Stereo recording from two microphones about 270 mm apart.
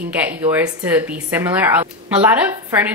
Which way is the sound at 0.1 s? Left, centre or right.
Centre.